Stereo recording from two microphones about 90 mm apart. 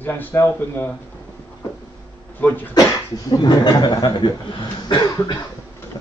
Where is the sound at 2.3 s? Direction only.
20° left (ahead or behind).